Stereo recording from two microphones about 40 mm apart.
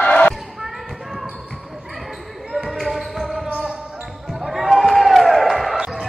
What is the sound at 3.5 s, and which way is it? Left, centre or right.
Basketball bounce, right.